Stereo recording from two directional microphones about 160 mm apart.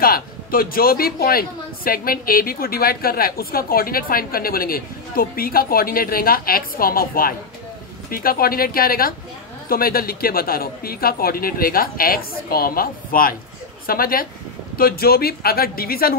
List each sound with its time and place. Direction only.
0.0 s a man's voice: 65° left (ahead or behind)